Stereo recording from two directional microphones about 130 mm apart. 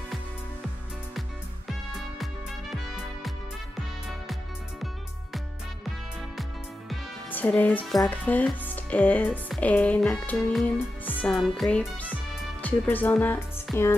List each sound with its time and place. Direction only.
1.7 s music: centre (ahead or behind)
7.2 s a woman's voice: 15° left (ahead or behind)
8.6 s music: 10° left (ahead or behind)
9.6 s speech: 10° left (ahead or behind)
10.5 s music: 10° left (ahead or behind)
11.3 s speech: centre (ahead or behind)
13.7 s speech: centre (ahead or behind)